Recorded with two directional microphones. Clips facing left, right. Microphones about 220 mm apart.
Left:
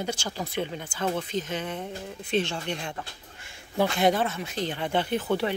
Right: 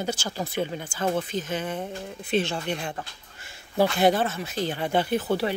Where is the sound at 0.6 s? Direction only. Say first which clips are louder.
Right 2 dB; 35° right (ahead or behind).